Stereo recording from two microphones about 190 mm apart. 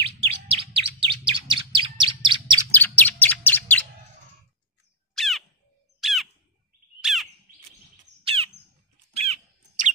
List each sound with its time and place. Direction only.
0.0 s bird: 30° right (ahead or behind)
2.7 s chirp: 10° left (ahead or behind)
5.1 s crow: centre (ahead or behind)
5.9 s bird: centre (ahead or behind)
8.2 s squawk: 30° right (ahead or behind)
9.1 s a sound: 35° right (ahead or behind)